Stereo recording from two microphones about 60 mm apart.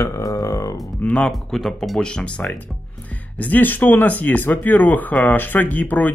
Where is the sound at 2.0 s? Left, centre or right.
Centre.